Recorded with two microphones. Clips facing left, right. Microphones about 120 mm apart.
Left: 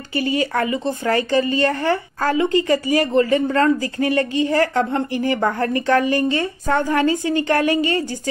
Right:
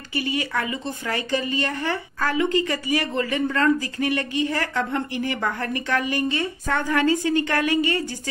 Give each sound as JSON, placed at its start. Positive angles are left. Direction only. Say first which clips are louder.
{"t": 0.1, "sound": "speech", "louder": "left 5 dB", "side_deg": 35}